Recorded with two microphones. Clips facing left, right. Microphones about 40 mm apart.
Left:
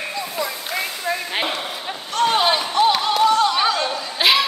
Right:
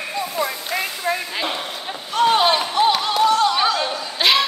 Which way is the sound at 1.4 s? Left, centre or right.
Centre.